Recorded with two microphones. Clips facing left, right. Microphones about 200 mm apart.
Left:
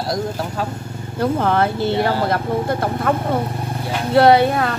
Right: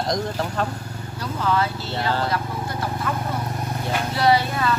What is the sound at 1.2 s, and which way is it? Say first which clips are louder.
Speech: left 6 dB; 55° left (ahead or behind).